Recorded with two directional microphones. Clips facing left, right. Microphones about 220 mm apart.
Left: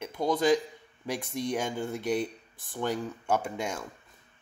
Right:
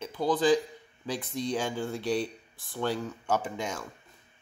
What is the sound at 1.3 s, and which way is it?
Speech, 15° left (ahead or behind).